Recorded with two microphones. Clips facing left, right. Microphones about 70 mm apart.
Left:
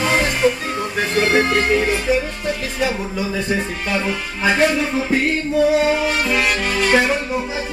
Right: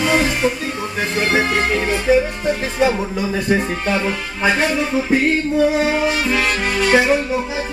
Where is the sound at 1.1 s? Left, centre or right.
Centre.